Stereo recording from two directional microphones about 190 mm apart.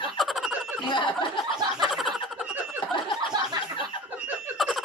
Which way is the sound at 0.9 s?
25° left (ahead or behind).